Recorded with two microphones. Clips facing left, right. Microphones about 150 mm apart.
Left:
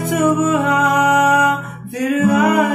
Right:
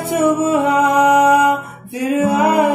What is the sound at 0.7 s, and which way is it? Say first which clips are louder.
Music: right 2 dB; 30° right (ahead or behind).